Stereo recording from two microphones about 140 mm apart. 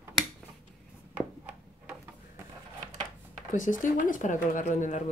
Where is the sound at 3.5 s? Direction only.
65° left (ahead or behind).